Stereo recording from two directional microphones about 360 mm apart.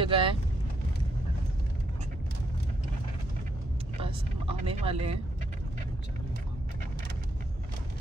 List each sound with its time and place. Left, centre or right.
0.0 s vehicle: centre
4.0 s vehicle: centre